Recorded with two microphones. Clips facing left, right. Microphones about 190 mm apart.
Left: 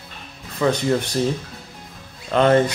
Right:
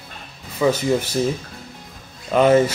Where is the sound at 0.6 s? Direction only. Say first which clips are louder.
Right 1 dB; 5° right (ahead or behind).